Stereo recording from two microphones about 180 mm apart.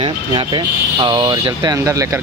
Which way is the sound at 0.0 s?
30° right (ahead or behind).